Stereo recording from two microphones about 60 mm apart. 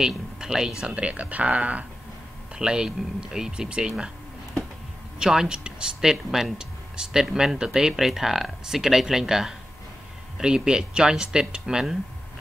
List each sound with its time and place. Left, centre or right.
0.0 s speech: centre
5.2 s speech: centre